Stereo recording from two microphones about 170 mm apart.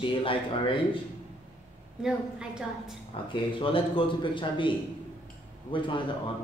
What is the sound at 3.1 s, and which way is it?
A man's voice, 30° left (ahead or behind).